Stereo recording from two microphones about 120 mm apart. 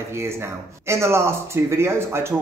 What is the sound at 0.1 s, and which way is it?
Speech, 20° right (ahead or behind).